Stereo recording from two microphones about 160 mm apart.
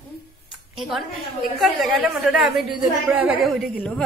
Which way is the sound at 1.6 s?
Centre (ahead or behind).